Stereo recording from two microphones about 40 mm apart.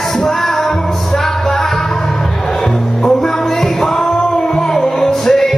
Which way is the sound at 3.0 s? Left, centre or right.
Centre.